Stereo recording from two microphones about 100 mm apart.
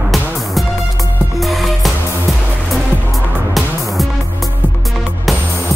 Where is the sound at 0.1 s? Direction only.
Centre (ahead or behind).